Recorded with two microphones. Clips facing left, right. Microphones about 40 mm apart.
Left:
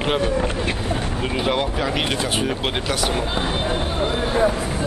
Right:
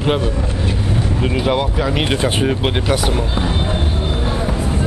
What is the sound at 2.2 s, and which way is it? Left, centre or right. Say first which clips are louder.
Speech: right 5 dB; centre.